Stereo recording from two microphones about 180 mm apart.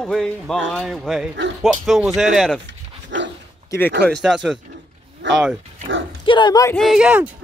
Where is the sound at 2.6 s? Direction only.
85° right.